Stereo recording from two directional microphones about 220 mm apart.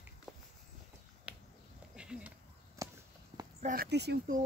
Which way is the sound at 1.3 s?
5° right (ahead or behind).